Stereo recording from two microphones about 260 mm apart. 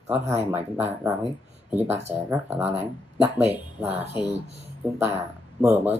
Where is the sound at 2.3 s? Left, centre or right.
Centre.